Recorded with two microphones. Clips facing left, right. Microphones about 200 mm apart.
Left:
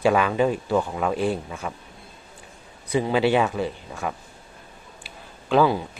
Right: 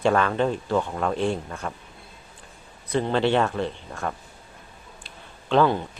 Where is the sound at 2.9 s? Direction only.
5° left (ahead or behind).